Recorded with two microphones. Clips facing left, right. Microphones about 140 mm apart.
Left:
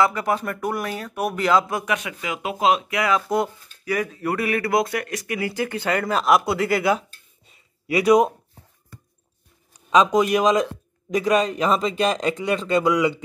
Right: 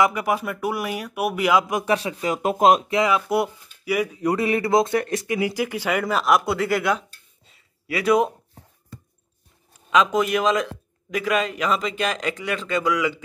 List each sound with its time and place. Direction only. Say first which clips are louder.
0.0 s speech: even; 10° right (ahead or behind)
1.9 s speech: right 4 dB; 30° right (ahead or behind)
3.1 s speech: even; 10° right (ahead or behind)
5.5 s speech: even; 10° right (ahead or behind)
7.4 s a sound: left 4 dB; 15° left (ahead or behind)
9.8 s speech: left 2 dB; 20° left (ahead or behind)